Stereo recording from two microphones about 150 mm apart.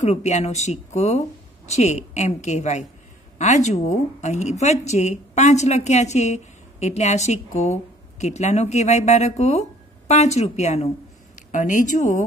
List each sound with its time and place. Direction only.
0.0 s a woman's voice: 50° left (ahead or behind)
11.5 s speech: 60° left (ahead or behind)